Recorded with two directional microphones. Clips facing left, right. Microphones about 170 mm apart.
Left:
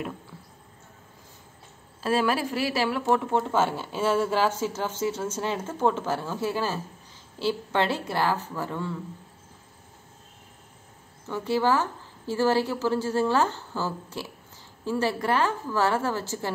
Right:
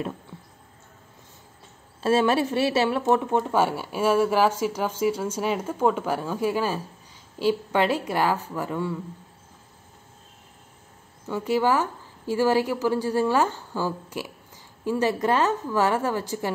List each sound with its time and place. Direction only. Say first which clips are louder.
2.0 s speech: right 4 dB; 25° right (ahead or behind)
11.2 s speech: right 2 dB; 15° right (ahead or behind)